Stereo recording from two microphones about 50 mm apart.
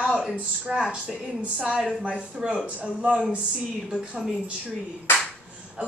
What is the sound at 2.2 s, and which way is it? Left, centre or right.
Speech, centre.